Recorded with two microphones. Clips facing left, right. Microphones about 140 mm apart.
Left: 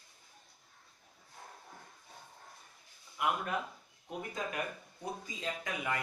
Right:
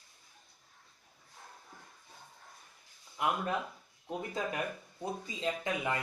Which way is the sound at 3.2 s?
25° right (ahead or behind).